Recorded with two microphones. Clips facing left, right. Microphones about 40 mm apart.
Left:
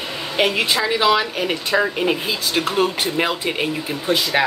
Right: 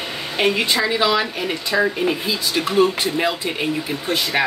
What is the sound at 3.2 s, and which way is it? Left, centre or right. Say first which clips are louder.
Speech: left 3 dB; centre.